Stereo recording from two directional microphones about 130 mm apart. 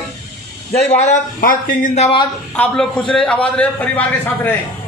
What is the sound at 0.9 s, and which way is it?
Speech, 60° left (ahead or behind).